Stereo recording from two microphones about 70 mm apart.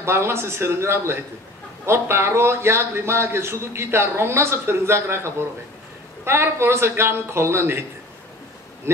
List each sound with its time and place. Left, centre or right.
0.0 s a man's voice: right
8.9 s a man's voice: right